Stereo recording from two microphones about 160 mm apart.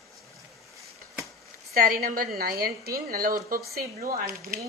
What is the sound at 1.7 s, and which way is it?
Speech, 65° right (ahead or behind).